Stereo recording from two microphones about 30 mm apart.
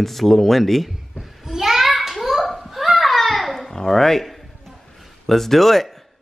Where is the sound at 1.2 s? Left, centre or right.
Centre.